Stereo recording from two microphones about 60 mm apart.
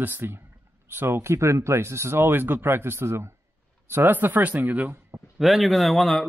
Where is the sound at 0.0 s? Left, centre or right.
Right.